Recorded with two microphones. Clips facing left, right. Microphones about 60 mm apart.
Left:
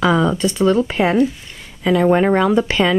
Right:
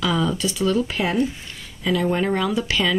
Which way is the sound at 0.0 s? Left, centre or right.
Left.